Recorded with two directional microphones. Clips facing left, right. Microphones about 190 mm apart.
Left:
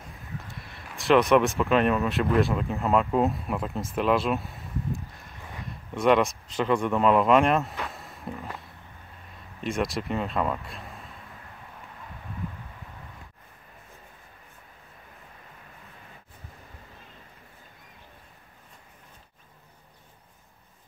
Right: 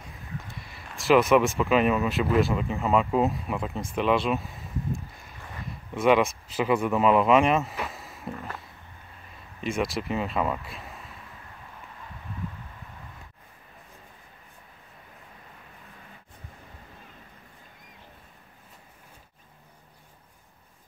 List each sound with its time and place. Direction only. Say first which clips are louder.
0.6 s speech: even; centre (ahead or behind)
8.4 s a sound: even; 5° left (ahead or behind)
9.6 s speech: even; centre (ahead or behind)